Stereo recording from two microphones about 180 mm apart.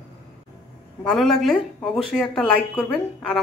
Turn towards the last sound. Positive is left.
turn(degrees=5)  # may be behind; listen again after turning